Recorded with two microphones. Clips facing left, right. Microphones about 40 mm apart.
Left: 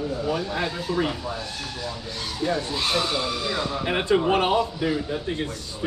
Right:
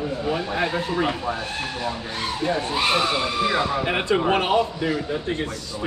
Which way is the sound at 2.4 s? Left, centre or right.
Right.